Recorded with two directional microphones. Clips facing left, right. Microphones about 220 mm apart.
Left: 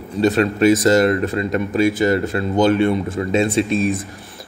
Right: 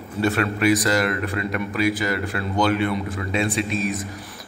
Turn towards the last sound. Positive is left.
turn(degrees=25)  # may be behind; listen again after turning